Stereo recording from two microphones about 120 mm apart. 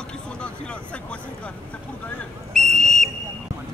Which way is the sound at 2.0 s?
5° left (ahead or behind).